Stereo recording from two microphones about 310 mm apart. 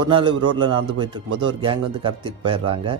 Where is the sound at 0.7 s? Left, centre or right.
Centre.